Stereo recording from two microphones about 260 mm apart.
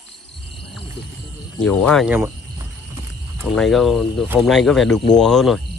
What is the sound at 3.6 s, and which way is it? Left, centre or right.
Speech, centre.